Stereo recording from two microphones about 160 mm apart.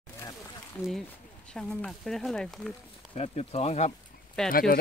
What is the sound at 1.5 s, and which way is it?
Speech, 5° left (ahead or behind).